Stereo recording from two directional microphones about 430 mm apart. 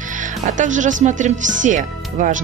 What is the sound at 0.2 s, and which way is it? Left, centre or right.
Speech, centre.